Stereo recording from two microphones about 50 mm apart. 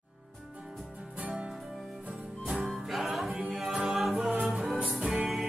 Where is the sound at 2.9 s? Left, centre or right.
Centre.